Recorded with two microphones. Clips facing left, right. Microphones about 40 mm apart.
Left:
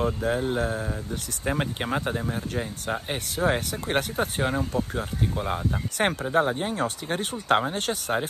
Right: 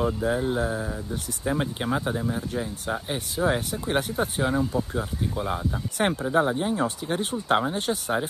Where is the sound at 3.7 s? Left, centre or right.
Left.